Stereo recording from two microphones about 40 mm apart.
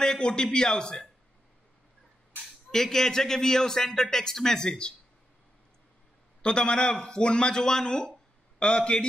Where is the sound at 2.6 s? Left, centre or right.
Centre.